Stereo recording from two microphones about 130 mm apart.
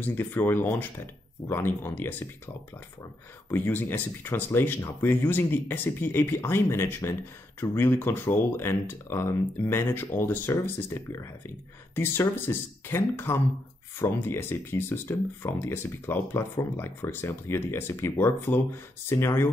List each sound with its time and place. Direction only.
0.0 s speech: 15° left (ahead or behind)